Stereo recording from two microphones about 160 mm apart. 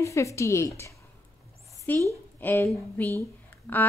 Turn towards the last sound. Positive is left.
turn(degrees=10)  # may be behind; listen again after turning